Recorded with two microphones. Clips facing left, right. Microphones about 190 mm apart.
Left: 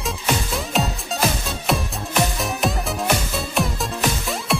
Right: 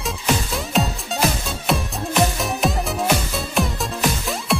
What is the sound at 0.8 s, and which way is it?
Music, centre (ahead or behind).